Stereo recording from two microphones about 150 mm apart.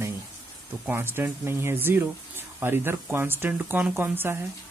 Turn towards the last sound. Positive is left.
turn(degrees=-15)  # may be behind; listen again after turning